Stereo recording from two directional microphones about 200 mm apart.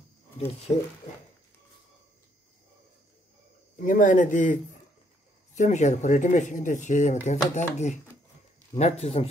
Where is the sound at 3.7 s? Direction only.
40° left (ahead or behind).